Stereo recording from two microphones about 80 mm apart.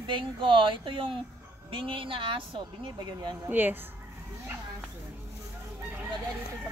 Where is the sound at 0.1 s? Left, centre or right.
Right.